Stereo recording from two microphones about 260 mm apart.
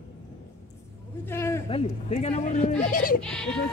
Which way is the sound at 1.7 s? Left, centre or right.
Left.